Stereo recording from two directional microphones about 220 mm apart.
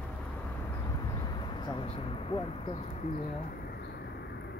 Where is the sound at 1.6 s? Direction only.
20° left (ahead or behind).